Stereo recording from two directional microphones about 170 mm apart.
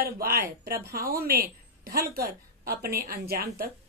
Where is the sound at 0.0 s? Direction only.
60° right (ahead or behind).